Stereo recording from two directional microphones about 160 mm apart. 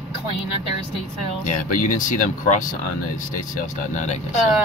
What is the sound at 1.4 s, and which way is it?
A man's voice, 55° left (ahead or behind).